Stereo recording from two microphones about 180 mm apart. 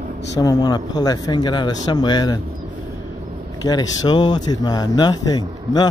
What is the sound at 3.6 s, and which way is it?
A man's voice, 25° left (ahead or behind).